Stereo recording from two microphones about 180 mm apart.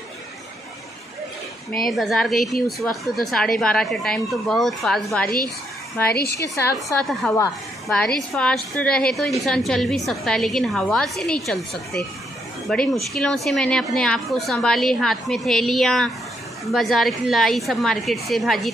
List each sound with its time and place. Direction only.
1.9 s a woman's voice: centre (ahead or behind)
6.1 s a woman's voice: 60° left (ahead or behind)
6.4 s a woman's voice: 15° left (ahead or behind)
7.0 s a woman's voice: centre (ahead or behind)